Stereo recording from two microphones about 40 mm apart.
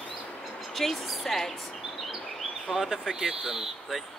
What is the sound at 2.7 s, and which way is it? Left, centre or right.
Speech, centre.